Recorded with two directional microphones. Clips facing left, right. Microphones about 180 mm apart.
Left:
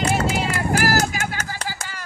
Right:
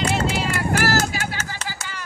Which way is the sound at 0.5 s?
45° left (ahead or behind).